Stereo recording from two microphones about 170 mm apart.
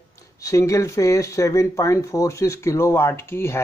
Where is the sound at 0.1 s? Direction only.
20° left (ahead or behind).